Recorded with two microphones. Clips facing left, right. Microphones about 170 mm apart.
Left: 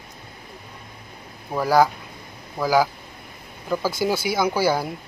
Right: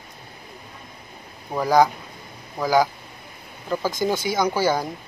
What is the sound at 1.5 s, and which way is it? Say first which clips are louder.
Speech: even; 5° left (ahead or behind).